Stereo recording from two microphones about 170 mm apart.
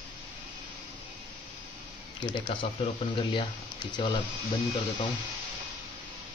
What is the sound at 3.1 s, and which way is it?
Speech, 30° left (ahead or behind).